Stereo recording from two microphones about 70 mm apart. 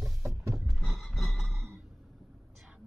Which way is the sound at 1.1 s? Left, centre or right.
Centre.